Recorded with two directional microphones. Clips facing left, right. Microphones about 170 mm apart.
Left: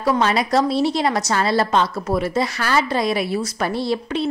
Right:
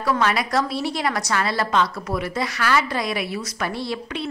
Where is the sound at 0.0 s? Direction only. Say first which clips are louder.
Left 3 dB; 25° left (ahead or behind).